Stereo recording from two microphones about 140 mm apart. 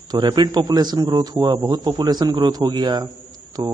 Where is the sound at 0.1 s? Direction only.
30° right (ahead or behind).